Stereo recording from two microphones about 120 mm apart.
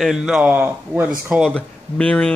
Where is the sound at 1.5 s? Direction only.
10° left (ahead or behind).